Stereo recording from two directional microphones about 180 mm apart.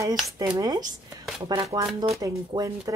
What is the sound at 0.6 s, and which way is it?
Speech, 20° right (ahead or behind).